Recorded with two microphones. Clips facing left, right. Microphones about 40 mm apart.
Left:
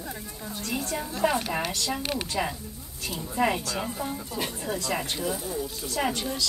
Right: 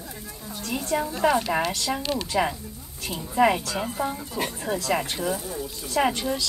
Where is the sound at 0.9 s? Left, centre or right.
Centre.